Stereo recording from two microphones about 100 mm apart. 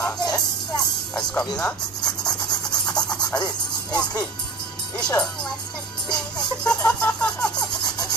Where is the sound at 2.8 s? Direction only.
10° left (ahead or behind).